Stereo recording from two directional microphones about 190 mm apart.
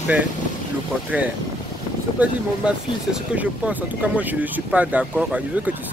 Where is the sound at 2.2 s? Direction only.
5° right (ahead or behind).